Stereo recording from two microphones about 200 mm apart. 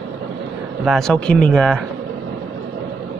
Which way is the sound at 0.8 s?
Centre (ahead or behind).